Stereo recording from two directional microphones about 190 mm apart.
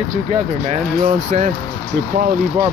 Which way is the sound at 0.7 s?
35° right (ahead or behind).